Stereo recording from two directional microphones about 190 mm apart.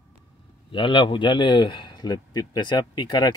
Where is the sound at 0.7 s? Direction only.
25° left (ahead or behind).